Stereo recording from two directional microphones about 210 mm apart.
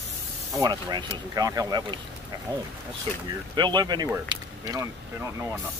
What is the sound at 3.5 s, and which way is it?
Speech, 20° right (ahead or behind).